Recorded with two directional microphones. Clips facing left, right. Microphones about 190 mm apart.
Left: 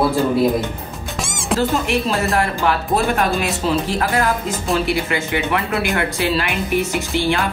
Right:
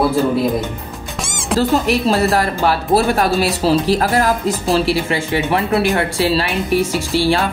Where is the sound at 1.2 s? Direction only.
Centre (ahead or behind).